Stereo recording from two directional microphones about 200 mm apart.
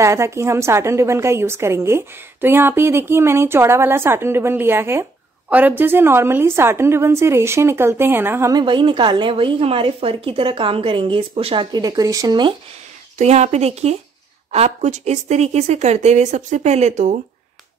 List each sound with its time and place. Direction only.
0.0 s a woman's voice: 15° right (ahead or behind)
13.2 s speech: 35° right (ahead or behind)